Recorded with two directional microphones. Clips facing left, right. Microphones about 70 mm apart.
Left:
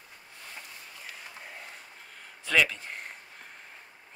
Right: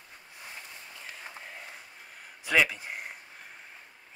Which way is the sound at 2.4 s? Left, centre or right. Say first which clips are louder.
Even; centre.